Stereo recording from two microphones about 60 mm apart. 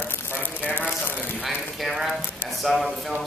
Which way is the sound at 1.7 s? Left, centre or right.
Centre.